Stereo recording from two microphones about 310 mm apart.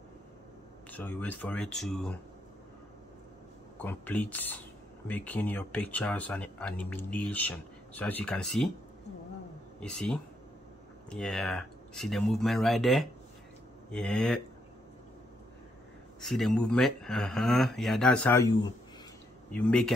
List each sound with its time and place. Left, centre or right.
0.8 s speech: centre
3.8 s speech: centre
9.8 s speech: centre
16.3 s speech: centre
19.5 s speech: centre